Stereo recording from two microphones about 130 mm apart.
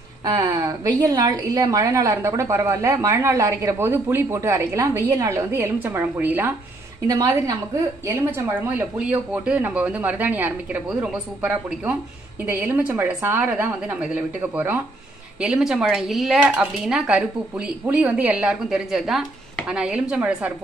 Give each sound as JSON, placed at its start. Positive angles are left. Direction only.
{"t": 0.2, "sound": "a woman's voice", "side_deg": -30}
{"t": 7.1, "sound": "a woman's voice", "side_deg": -30}
{"t": 8.1, "sound": "speech", "side_deg": -15}